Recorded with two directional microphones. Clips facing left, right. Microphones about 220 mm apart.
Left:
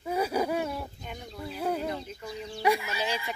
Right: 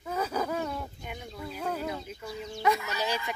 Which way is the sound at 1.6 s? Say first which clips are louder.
Left 4 dB; 10° left (ahead or behind).